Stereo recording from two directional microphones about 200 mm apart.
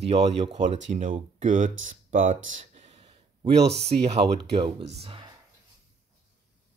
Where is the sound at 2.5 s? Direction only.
30° right (ahead or behind).